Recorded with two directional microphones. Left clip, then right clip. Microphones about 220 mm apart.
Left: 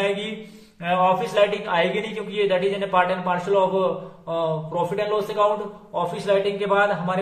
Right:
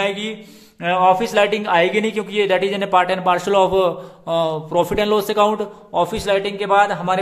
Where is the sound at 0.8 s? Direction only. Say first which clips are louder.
Right 5 dB; 45° right (ahead or behind).